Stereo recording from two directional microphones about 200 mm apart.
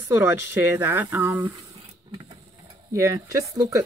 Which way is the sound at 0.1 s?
10° right (ahead or behind).